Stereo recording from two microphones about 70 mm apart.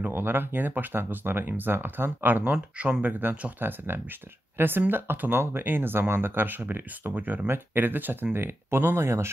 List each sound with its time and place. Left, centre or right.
0.0 s speech: right